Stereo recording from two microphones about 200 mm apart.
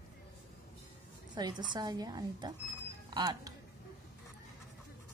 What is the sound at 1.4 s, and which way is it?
A woman's voice, 20° right (ahead or behind).